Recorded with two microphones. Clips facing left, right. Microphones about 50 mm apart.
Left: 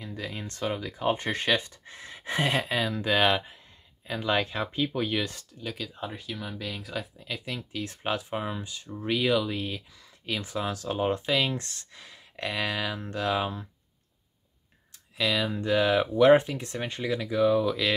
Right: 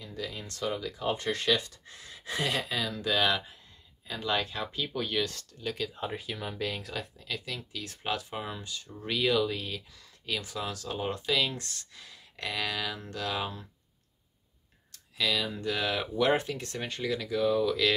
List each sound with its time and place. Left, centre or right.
0.0 s speech: left; by 7.1 s centre
7.2 s speech: left
14.9 s speech: left